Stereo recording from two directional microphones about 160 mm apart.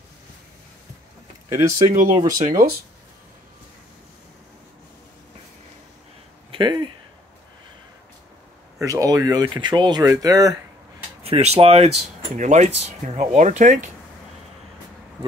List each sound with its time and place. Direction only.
1.5 s speech: 20° right (ahead or behind)
2.4 s speech: 65° right (ahead or behind)
6.5 s speech: 30° right (ahead or behind)
8.7 s speech: 20° right (ahead or behind)
11.2 s speech: 40° right (ahead or behind)